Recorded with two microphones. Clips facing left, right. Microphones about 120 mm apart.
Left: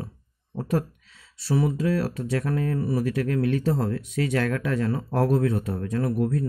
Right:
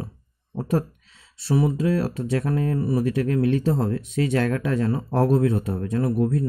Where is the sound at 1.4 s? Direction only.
25° right (ahead or behind).